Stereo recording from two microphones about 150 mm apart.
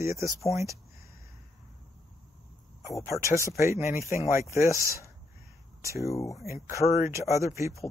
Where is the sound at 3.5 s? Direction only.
20° right (ahead or behind).